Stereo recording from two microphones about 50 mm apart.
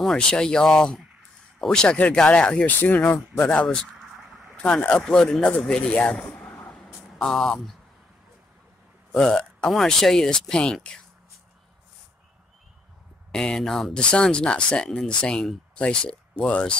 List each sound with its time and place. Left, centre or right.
0.0 s speech: centre
2.6 s speech: left
3.6 s speech: centre
3.9 s a sound: centre
4.6 s speech: centre
5.0 s speech: centre
5.7 s speech: left
6.3 s vehicle: left
7.2 s speech: centre
9.1 s speech: centre
13.3 s speech: centre
13.9 s speech: centre